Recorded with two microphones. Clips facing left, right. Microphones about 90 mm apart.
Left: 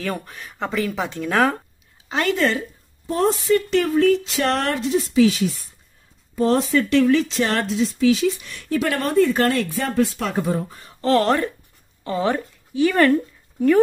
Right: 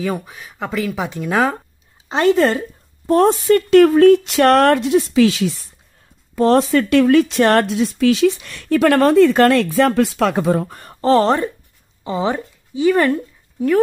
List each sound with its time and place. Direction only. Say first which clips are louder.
0.0 s speech: right 5 dB; 10° right (ahead or behind)
2.0 s speech: right 6 dB; 25° right (ahead or behind)
3.1 s speech: right 6 dB; 60° right (ahead or behind); by 5.5 s 80° right
6.3 s speech: right 5 dB; 65° right (ahead or behind)
11.0 s speech: right 4 dB; 30° right (ahead or behind); by 13.7 s 10° right (ahead or behind)